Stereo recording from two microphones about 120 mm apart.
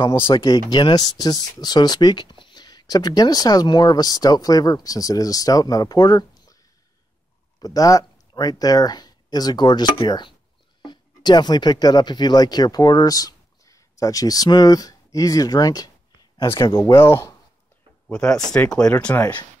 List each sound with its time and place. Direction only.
0.2 s speech: 40° left (ahead or behind)
16.7 s speech: 20° left (ahead or behind)
18.0 s speech: 5° left (ahead or behind)